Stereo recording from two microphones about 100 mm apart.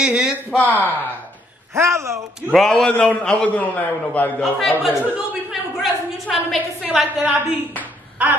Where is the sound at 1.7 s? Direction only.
30° right (ahead or behind).